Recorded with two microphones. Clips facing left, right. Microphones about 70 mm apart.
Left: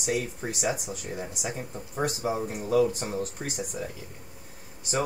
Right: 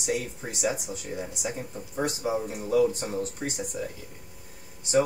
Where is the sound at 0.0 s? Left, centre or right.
Left.